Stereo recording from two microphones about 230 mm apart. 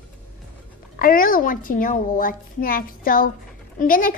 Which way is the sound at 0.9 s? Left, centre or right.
Left.